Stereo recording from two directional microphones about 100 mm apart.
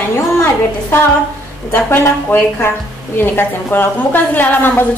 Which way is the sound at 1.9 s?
25° left (ahead or behind).